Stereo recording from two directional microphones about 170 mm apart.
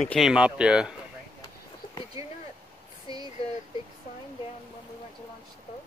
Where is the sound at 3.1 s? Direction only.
25° right (ahead or behind).